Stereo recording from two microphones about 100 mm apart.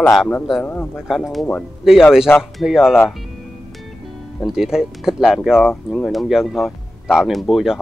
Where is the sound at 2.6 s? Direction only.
5° right (ahead or behind).